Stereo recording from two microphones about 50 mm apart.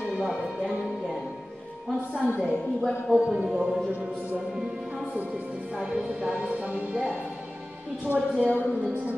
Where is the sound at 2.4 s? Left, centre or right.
Centre.